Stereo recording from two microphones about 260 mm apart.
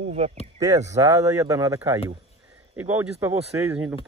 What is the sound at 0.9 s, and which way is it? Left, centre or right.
Speech, centre.